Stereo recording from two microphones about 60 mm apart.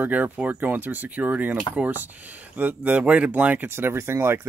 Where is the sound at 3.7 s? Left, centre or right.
Right.